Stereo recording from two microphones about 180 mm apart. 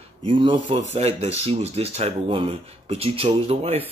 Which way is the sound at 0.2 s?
30° right (ahead or behind).